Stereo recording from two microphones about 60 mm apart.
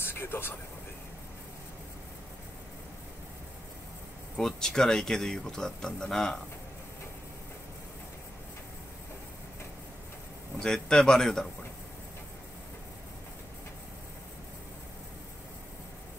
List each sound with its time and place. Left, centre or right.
0.0 s vehicle: left
4.4 s speech: centre
10.6 s speech: centre